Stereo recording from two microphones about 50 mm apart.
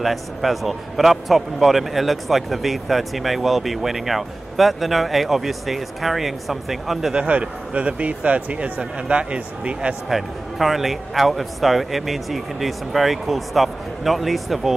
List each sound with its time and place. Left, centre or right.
0.0 s a man's voice: centre
7.2 s speech: right
10.0 s a man's voice: centre